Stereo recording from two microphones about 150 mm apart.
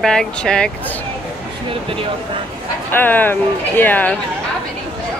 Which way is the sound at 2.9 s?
10° left (ahead or behind).